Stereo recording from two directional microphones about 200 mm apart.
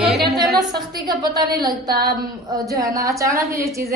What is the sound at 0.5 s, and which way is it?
A woman's voice, 20° right (ahead or behind).